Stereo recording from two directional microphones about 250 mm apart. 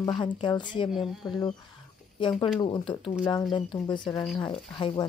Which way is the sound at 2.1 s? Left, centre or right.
Centre.